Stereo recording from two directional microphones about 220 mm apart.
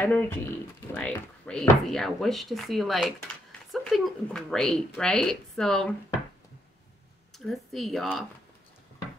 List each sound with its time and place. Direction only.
0.0 s speech: 10° left (ahead or behind)
7.3 s speech: centre (ahead or behind)